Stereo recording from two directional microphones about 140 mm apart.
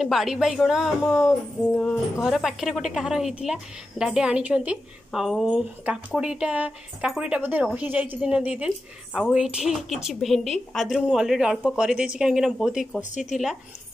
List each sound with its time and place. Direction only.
0.0 s a woman's voice: centre (ahead or behind)